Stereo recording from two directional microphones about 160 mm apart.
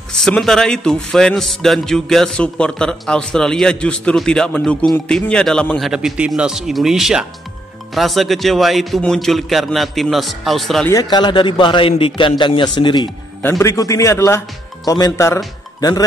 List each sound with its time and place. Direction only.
0.2 s a man's voice: centre (ahead or behind)
10.9 s speech: 25° left (ahead or behind)
13.4 s a man's voice: 15° left (ahead or behind)